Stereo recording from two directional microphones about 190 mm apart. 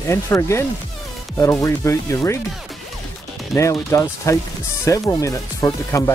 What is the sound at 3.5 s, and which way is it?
Speech, 15° left (ahead or behind).